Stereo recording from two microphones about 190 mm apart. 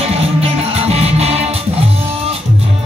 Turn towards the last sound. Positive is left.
turn(degrees=-35)  # may be behind; listen again after turning